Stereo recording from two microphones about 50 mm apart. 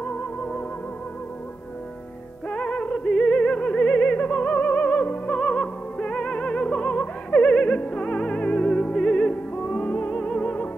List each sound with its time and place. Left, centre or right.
0.0 s music: left
2.5 s music: left